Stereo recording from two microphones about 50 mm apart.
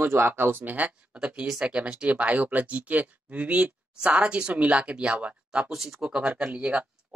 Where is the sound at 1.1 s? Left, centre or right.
Centre.